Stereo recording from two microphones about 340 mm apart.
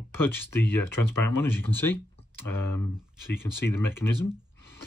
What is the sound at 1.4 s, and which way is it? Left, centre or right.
Speech, centre.